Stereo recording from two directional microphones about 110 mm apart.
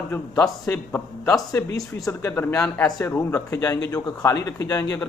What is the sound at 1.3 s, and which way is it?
A man's voice, 30° left (ahead or behind).